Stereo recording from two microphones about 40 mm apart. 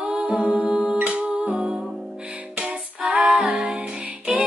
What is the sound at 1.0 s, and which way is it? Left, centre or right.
Music, right.